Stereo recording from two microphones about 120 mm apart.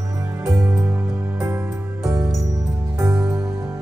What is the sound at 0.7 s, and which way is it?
Music, 5° right (ahead or behind).